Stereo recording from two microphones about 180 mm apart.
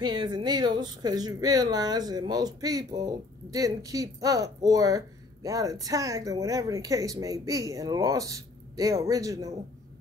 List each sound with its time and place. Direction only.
0.0 s speech: 25° right (ahead or behind)